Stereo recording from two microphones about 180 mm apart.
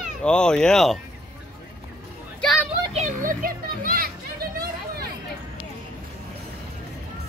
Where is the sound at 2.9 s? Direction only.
40° right (ahead or behind); by 5.0 s 55° right (ahead or behind).